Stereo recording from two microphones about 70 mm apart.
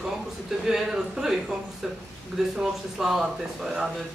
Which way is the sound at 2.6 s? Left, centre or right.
Centre.